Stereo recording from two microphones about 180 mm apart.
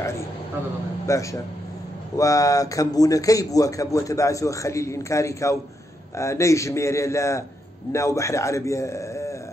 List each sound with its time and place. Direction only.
1.0 s a man's voice: 15° left (ahead or behind)